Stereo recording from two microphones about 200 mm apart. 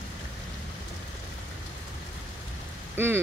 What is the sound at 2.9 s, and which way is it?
Speech, 10° right (ahead or behind).